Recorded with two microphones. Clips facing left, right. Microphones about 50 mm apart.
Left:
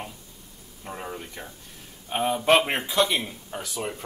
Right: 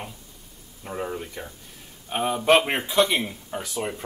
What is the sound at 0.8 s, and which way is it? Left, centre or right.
Speech, centre.